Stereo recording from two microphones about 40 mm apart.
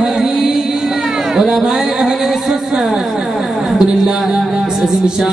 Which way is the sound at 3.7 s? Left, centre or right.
Centre.